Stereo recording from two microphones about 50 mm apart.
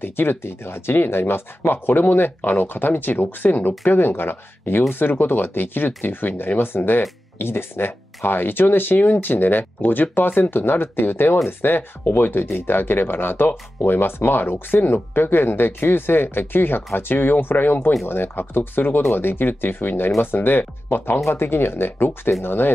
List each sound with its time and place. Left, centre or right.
0.0 s speech: left